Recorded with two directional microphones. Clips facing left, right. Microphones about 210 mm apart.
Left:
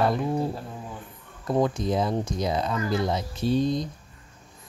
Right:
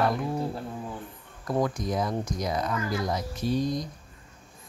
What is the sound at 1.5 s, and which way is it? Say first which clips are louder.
Speech: left 3 dB; 25° left (ahead or behind).